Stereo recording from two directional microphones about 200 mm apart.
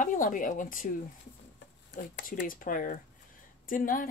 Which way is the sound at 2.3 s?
45° left (ahead or behind).